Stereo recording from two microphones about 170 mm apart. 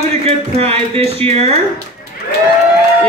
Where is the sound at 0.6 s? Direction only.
35° right (ahead or behind).